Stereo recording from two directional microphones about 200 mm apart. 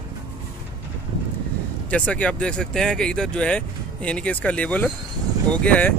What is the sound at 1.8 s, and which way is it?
Speech, 5° left (ahead or behind).